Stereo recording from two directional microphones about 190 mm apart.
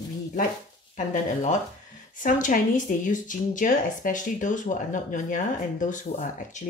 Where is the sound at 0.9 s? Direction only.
40° left (ahead or behind).